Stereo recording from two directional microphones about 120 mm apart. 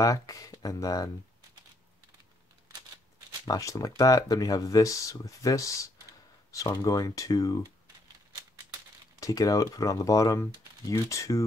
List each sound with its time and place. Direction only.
0.0 s speech: 30° left (ahead or behind)
3.4 s speech: 30° left (ahead or behind)
9.2 s speech: 30° left (ahead or behind)